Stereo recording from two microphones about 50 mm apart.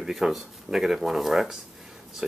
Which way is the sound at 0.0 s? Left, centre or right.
Centre.